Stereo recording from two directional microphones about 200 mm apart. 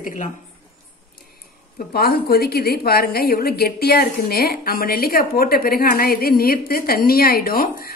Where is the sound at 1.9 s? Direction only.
50° left (ahead or behind).